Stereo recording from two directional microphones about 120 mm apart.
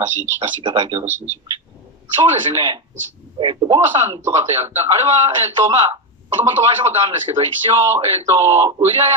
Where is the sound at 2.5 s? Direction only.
30° right (ahead or behind).